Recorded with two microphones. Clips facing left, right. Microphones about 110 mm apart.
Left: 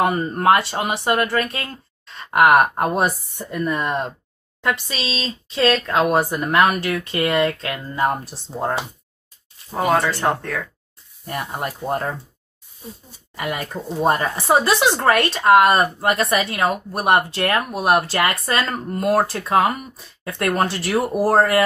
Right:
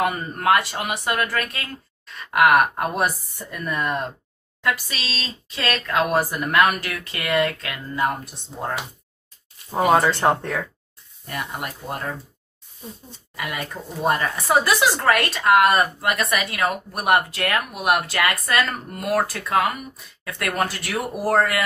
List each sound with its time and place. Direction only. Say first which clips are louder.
0.0 s speech: left 4 dB; 30° left (ahead or behind)
9.7 s speech: right 1 dB; 25° right (ahead or behind)
11.2 s speech: left 4 dB; 30° left (ahead or behind)
13.4 s speech: left 4 dB; 35° left (ahead or behind)